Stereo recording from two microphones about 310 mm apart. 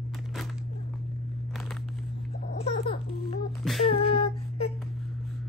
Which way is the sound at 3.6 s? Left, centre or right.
Centre.